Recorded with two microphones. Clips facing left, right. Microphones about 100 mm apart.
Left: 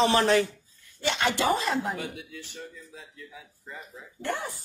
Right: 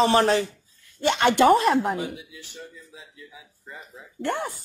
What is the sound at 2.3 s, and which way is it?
Speech, centre (ahead or behind).